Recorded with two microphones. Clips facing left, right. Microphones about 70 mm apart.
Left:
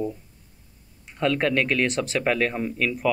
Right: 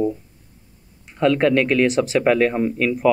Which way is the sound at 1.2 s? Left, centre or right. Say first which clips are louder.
Right 6 dB; centre.